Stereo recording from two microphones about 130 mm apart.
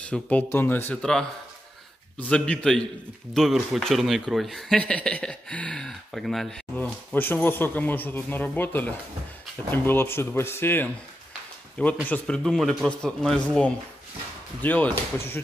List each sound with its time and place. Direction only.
0.1 s speech: 15° left (ahead or behind)
6.8 s speech: 15° left (ahead or behind)